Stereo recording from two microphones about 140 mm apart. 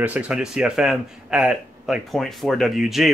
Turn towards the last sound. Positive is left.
turn(degrees=0)  # may be behind; listen again after turning